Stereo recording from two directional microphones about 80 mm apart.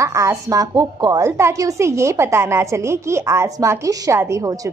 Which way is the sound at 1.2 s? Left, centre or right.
Right.